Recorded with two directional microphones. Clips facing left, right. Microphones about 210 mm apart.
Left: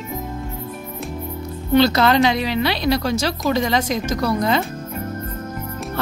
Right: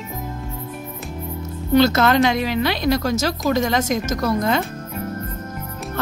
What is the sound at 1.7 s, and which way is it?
A woman's voice, 45° right (ahead or behind).